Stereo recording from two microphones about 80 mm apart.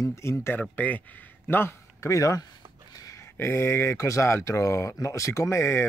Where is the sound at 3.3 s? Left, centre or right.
Left.